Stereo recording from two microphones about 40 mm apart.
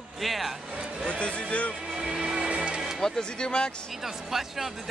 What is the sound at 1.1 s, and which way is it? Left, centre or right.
Speech, left.